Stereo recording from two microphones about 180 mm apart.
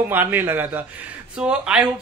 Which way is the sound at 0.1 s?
10° right (ahead or behind).